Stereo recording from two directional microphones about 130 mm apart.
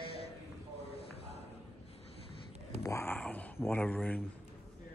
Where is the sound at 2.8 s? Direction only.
20° left (ahead or behind).